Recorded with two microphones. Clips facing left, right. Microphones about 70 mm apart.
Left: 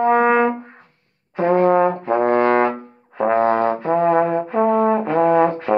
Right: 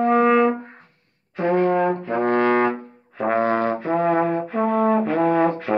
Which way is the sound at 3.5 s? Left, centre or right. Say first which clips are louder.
Left 3 dB; centre.